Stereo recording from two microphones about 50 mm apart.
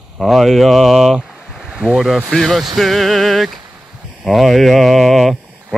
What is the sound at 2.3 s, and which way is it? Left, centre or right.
Speech, centre.